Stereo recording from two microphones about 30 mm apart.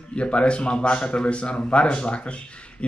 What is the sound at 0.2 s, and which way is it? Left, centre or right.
A man's voice, left.